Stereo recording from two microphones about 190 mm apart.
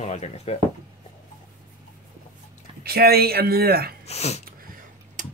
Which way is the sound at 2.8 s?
55° right (ahead or behind).